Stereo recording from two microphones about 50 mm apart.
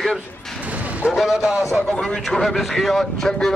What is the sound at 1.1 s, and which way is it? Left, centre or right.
Speech, centre.